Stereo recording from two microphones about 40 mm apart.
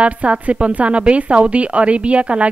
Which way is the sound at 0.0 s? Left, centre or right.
Right.